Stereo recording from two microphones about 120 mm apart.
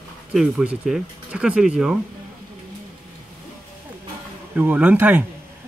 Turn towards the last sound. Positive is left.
turn(degrees=-15)  # may be behind; listen again after turning